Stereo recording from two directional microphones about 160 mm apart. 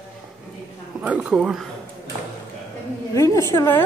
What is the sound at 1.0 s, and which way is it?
Speech, 10° right (ahead or behind).